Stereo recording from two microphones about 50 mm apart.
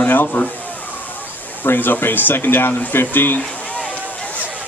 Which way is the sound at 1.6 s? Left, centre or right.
Left.